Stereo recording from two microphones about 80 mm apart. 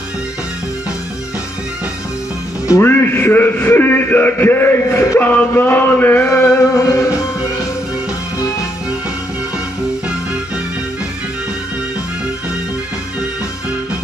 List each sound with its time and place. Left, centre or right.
2.8 s a man's voice: left
6.3 s music: left